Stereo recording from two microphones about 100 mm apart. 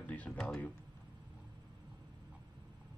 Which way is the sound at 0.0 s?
15° left (ahead or behind).